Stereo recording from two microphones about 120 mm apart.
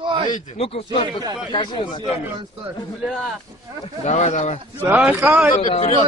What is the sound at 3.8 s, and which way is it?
Speech, 65° left (ahead or behind).